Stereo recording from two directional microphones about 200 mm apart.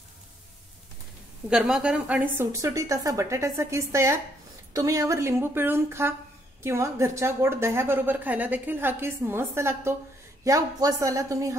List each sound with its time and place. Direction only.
1.5 s a woman's voice: 5° right (ahead or behind)